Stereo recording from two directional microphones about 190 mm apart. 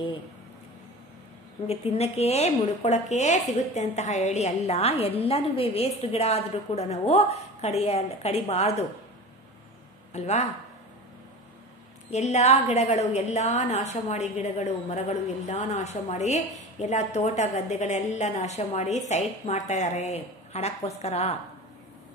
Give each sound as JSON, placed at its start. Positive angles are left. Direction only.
{"t": 1.7, "sound": "speech", "side_deg": 35}
{"t": 10.1, "sound": "speech", "side_deg": 35}
{"t": 12.1, "sound": "speech", "side_deg": 35}